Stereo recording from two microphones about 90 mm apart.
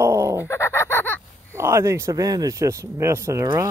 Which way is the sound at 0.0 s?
30° right (ahead or behind).